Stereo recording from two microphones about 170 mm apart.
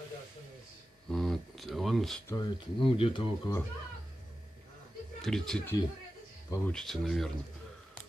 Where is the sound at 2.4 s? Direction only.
30° left (ahead or behind).